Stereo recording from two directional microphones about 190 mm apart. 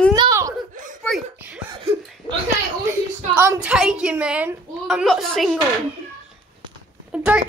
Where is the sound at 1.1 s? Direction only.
5° left (ahead or behind).